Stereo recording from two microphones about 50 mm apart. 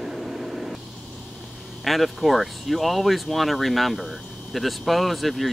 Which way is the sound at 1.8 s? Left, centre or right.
Centre.